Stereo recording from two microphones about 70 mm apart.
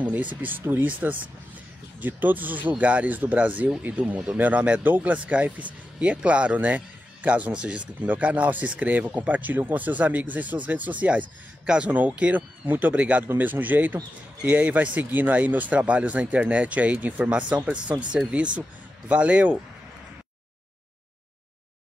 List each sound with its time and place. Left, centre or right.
0.0 s speech: right